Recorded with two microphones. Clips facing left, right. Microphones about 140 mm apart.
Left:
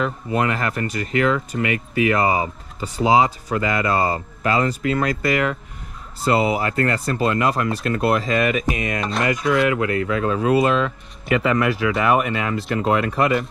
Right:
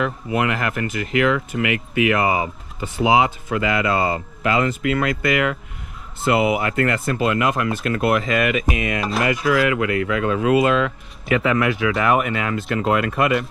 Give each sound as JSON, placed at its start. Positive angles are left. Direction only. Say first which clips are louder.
{"t": 0.4, "sound": "speech", "louder": "even", "side_deg": 35}
{"t": 11.2, "sound": "speech", "louder": "even", "side_deg": 0}